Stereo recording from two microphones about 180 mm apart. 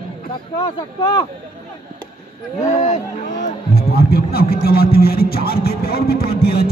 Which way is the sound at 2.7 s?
40° left (ahead or behind).